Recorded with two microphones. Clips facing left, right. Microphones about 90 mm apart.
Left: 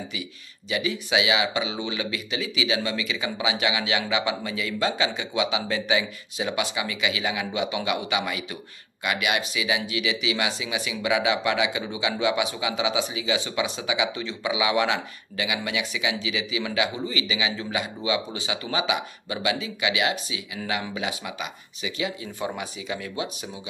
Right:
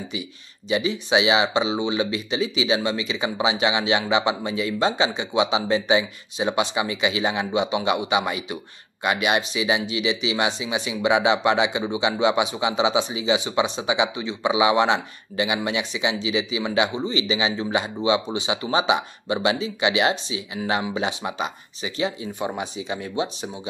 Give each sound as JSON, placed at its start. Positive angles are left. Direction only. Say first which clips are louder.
{"t": 0.7, "sound": "speech", "louder": "right 4 dB", "side_deg": -25}
{"t": 22.4, "sound": "speech", "louder": "right 3 dB", "side_deg": -20}